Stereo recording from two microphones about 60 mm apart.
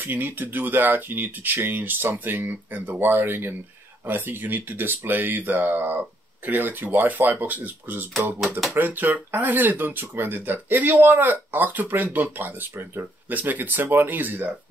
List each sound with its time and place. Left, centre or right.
0.0 s speech: right